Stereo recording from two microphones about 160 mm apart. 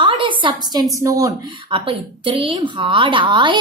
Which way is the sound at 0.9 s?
20° right (ahead or behind).